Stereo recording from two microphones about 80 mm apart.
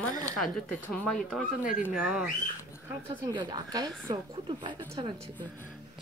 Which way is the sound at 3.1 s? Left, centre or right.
Right.